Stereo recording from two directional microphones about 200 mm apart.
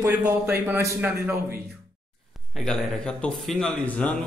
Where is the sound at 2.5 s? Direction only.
5° left (ahead or behind).